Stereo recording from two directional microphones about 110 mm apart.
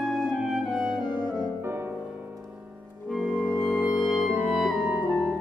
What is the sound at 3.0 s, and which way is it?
Music, centre (ahead or behind).